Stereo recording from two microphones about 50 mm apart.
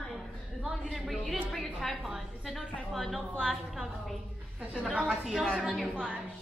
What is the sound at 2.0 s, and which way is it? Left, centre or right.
A woman's voice, centre.